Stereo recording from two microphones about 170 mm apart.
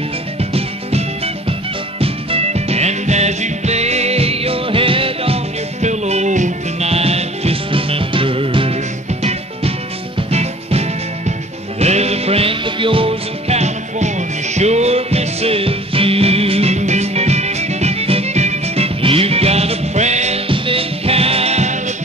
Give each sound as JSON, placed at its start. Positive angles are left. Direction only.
{"t": 0.4, "sound": "music", "side_deg": -35}